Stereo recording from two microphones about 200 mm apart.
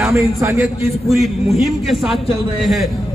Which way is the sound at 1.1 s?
Centre (ahead or behind).